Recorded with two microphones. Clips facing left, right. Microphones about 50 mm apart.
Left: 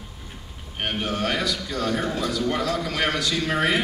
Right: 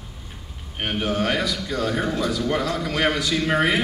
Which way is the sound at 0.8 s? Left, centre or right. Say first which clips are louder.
Right 2 dB; centre.